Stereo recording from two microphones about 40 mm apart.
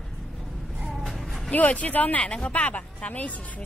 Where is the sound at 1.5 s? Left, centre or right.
Left.